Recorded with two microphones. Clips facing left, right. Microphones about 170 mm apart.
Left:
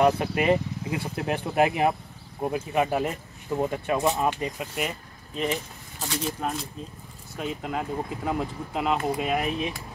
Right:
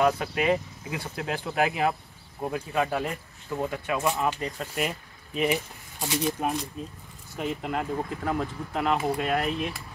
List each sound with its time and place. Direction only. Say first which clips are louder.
0.0 s speech: left 2 dB; 30° left (ahead or behind)
4.7 s speech: right 1 dB; 5° right (ahead or behind)
7.3 s speech: right 1 dB; centre (ahead or behind)